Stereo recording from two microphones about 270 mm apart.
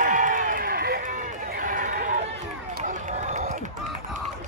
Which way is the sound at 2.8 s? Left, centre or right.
Right.